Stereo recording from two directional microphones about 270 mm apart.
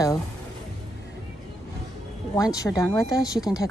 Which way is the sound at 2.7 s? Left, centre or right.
Centre.